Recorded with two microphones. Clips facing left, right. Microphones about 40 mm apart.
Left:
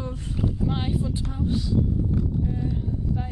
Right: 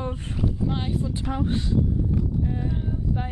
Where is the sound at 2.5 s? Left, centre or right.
Right.